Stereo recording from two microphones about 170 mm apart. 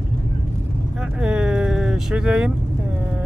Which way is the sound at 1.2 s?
5° right (ahead or behind).